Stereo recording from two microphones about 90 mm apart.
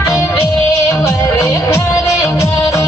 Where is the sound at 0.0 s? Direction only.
35° left (ahead or behind).